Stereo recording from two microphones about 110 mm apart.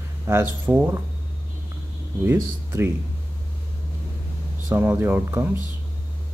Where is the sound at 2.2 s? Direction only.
20° right (ahead or behind).